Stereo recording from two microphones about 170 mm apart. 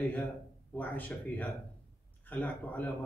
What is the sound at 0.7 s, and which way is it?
A man's voice, 10° left (ahead or behind).